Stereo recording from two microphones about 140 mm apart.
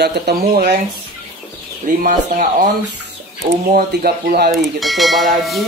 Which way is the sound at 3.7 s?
90° right.